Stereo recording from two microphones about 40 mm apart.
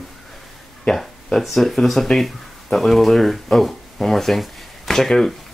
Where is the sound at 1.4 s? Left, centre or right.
Centre.